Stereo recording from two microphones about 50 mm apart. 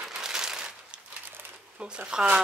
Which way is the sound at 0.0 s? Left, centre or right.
Centre.